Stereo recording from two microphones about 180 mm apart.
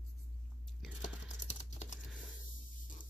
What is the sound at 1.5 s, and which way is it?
Typing, 40° left (ahead or behind).